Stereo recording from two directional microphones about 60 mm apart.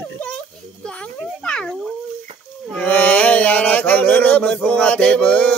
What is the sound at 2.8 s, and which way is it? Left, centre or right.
Chant, left.